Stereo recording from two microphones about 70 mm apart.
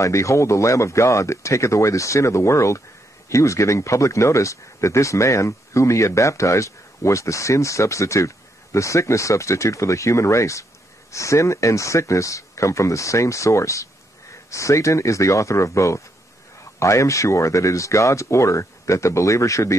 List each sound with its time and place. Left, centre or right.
0.0 s speech: left